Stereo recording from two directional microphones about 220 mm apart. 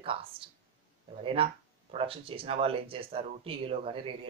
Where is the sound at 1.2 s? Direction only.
25° right (ahead or behind).